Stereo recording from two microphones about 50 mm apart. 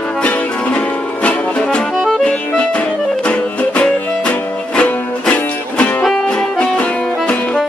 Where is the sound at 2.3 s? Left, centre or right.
Left.